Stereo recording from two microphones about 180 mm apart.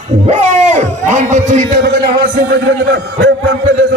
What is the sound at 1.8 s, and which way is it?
A man's voice, 70° right (ahead or behind).